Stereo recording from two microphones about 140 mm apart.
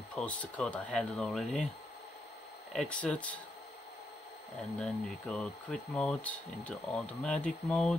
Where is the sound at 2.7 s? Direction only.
10° left (ahead or behind).